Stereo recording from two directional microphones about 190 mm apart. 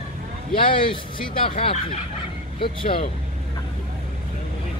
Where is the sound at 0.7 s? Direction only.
25° left (ahead or behind).